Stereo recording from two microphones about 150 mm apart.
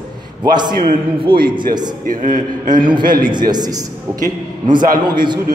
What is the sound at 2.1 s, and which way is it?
Speech, 65° right (ahead or behind).